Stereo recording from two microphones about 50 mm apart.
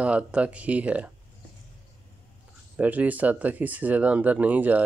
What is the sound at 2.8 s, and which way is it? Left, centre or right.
Speech, right.